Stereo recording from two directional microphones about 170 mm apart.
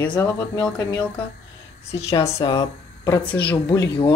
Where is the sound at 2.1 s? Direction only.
20° left (ahead or behind).